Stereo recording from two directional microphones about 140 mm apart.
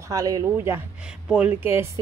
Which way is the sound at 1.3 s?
10° right (ahead or behind).